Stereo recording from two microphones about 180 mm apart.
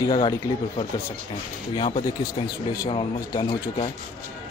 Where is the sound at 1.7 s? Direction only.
25° left (ahead or behind).